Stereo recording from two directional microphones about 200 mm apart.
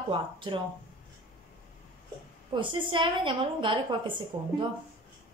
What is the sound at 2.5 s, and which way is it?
A woman's voice, 25° right (ahead or behind).